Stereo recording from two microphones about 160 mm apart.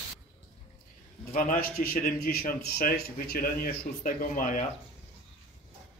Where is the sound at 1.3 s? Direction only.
60° left (ahead or behind).